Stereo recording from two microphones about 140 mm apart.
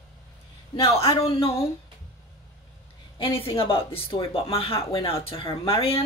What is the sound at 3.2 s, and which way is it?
Speech, 40° left (ahead or behind).